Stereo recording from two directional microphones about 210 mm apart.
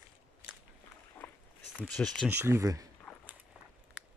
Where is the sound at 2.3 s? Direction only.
10° right (ahead or behind).